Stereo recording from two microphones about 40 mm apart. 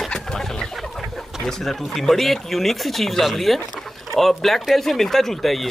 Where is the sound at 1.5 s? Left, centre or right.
Centre.